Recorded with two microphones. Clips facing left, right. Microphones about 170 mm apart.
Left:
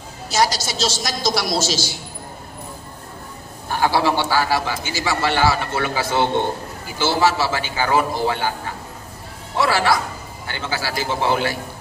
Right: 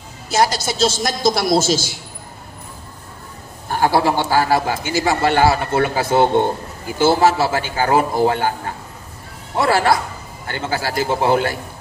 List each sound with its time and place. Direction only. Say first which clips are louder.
0.3 s a man's voice: right 2 dB; 55° right (ahead or behind)
3.7 s a man's voice: right 2 dB; 45° right (ahead or behind)